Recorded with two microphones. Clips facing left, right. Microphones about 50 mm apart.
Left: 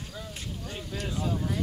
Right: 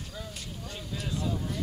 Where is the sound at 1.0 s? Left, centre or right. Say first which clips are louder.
Left 2 dB; left.